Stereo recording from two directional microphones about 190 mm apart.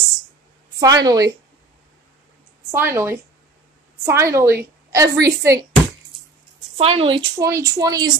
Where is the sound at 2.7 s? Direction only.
15° right (ahead or behind).